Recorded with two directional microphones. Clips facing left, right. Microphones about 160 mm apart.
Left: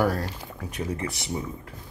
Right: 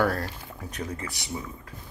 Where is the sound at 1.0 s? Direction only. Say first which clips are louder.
Left 4 dB; 25° left (ahead or behind).